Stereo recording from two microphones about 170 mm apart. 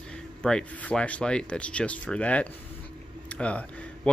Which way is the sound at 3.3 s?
5° left (ahead or behind).